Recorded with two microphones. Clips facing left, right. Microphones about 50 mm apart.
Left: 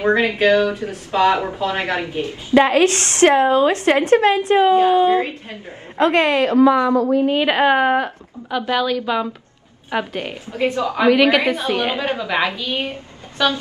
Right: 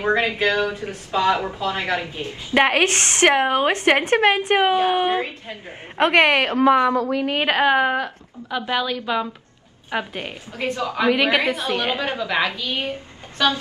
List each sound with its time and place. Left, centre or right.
0.0 s speech: left
2.2 s a woman's voice: right
7.1 s a woman's voice: right
7.4 s a woman's voice: centre
8.6 s a woman's voice: centre
10.2 s a woman's voice: left
11.1 s a woman's voice: centre
11.5 s a woman's voice: centre
12.2 s a woman's voice: left
13.4 s a woman's voice: centre